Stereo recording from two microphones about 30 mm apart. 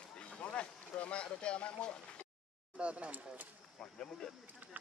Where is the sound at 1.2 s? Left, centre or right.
Left.